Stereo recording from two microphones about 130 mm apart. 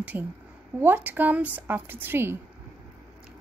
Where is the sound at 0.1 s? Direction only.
15° right (ahead or behind).